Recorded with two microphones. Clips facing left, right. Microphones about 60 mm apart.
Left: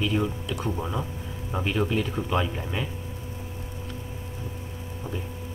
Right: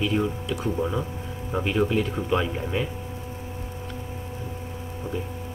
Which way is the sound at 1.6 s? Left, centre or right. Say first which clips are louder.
Right 3 dB; centre.